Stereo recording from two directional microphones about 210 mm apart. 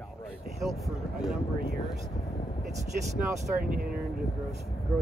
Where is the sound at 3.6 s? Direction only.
45° right (ahead or behind).